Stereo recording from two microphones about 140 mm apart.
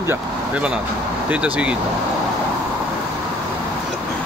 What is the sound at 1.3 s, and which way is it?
Speech, 10° right (ahead or behind).